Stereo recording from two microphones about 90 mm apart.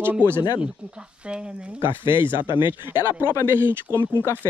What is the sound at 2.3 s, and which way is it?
Speech, 60° left (ahead or behind).